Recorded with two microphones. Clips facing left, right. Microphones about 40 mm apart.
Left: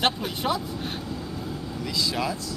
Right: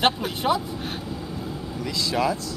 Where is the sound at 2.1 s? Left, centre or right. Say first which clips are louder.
Right 5 dB; centre.